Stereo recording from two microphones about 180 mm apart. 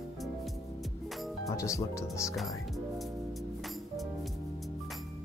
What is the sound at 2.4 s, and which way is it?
Music, centre (ahead or behind).